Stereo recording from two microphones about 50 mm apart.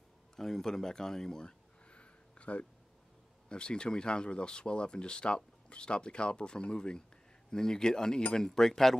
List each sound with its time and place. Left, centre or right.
0.4 s speech: centre